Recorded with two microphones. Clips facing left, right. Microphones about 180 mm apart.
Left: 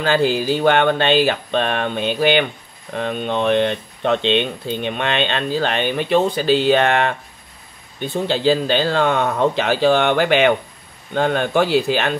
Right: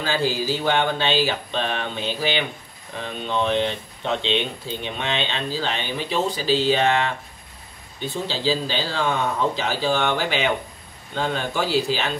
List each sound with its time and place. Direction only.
0.0 s speech: 60° left (ahead or behind)